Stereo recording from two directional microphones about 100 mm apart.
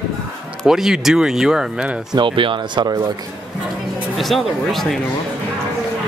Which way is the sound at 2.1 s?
55° right (ahead or behind).